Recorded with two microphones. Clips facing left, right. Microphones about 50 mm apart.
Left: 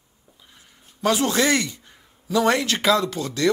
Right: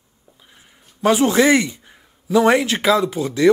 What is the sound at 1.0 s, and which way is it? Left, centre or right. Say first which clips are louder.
Speech: right 5 dB; centre.